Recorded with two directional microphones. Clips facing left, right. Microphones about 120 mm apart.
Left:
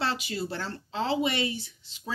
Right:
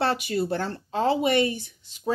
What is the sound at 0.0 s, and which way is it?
Speech, 50° right (ahead or behind).